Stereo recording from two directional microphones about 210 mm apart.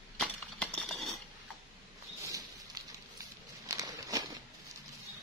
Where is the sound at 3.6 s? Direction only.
15° right (ahead or behind).